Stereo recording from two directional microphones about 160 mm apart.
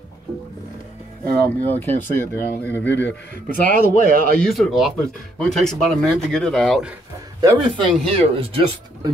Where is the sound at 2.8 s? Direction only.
90° left.